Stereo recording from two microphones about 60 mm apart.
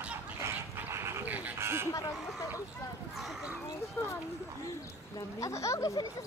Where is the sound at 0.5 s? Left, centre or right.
Right.